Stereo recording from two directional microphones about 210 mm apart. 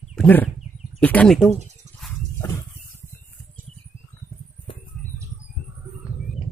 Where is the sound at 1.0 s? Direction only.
5° left (ahead or behind).